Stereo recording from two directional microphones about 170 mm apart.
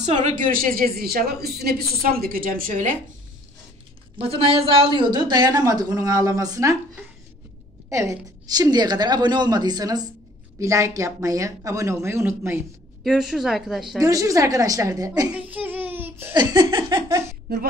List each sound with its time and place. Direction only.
0.0 s a woman's voice: 45° right (ahead or behind)
4.2 s a woman's voice: 35° right (ahead or behind)
7.9 s a woman's voice: 20° right (ahead or behind)
13.0 s speech: 5° right (ahead or behind)
13.9 s a woman's voice: 20° right (ahead or behind)
15.3 s a sound: 10° right (ahead or behind)
16.3 s a woman's voice: 25° right (ahead or behind)